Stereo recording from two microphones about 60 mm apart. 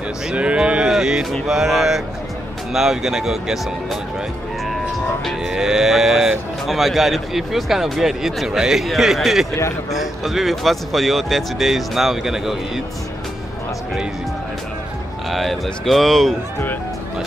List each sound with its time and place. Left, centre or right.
0.3 s speech: centre
0.9 s a sound: centre
1.5 s speech: centre
15.2 s speech: centre